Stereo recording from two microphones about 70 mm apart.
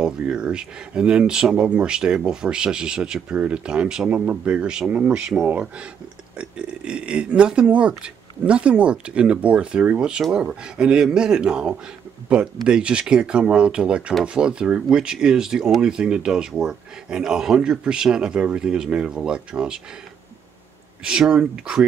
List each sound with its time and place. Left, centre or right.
0.0 s speech: centre
6.3 s speech: centre
21.0 s speech: centre